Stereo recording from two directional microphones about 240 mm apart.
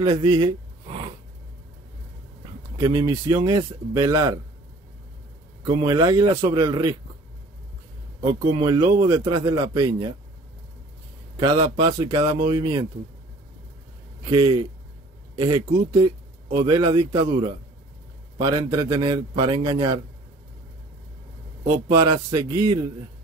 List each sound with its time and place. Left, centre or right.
0.0 s speech: right
0.8 s a sound: right
2.8 s a man's voice: centre
5.6 s a man's voice: centre
8.4 s a man's voice: right
11.3 s speech: centre
14.3 s a man's voice: centre
21.8 s a man's voice: centre